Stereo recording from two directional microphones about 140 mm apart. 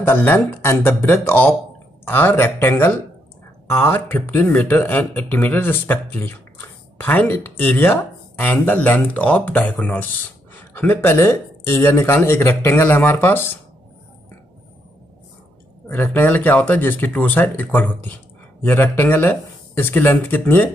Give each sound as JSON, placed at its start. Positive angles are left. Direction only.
{"t": 0.0, "sound": "speech", "side_deg": 15}
{"t": 15.9, "sound": "speech", "side_deg": 15}